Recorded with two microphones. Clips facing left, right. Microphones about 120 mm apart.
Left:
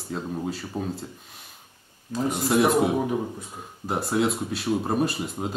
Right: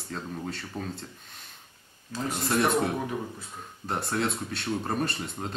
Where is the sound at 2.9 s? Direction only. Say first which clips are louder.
Left 6 dB; 20° left (ahead or behind).